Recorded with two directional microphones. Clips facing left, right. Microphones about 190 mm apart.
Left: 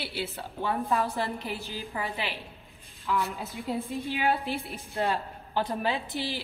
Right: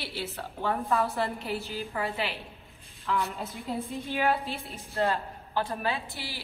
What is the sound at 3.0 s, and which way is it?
A woman's voice, centre (ahead or behind).